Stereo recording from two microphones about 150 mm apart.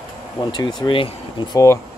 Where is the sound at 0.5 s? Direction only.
30° left (ahead or behind).